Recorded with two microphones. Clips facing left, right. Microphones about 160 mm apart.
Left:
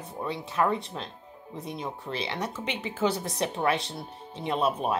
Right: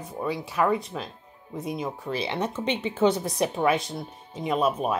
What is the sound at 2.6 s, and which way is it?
Speech, 25° right (ahead or behind).